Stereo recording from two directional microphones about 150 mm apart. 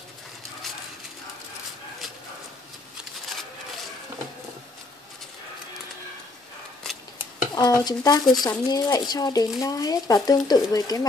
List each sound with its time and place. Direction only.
7.5 s speech: 25° left (ahead or behind)